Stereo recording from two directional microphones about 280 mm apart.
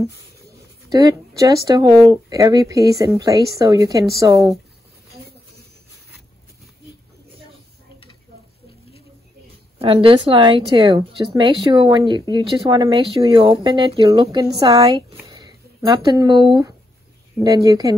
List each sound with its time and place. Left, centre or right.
0.8 s a woman's voice: centre
9.8 s a woman's voice: centre